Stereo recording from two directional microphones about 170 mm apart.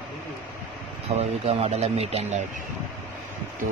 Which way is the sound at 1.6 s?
40° right (ahead or behind).